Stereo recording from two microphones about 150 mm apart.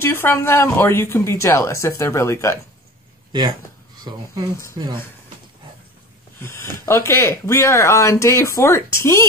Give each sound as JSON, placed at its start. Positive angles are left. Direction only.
{"t": 0.0, "sound": "speech", "side_deg": 15}
{"t": 3.3, "sound": "speech", "side_deg": -30}
{"t": 6.4, "sound": "speech", "side_deg": 15}